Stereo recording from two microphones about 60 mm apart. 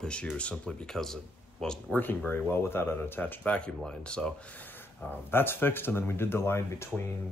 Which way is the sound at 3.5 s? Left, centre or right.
Centre.